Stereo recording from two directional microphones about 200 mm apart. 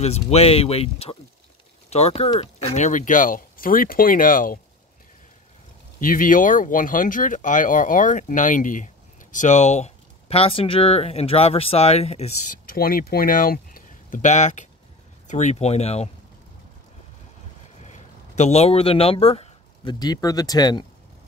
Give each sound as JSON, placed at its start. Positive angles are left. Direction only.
{"t": 0.0, "sound": "speech", "side_deg": 30}
{"t": 5.9, "sound": "speech", "side_deg": 40}
{"t": 12.4, "sound": "speech", "side_deg": 45}
{"t": 17.8, "sound": "speech", "side_deg": 35}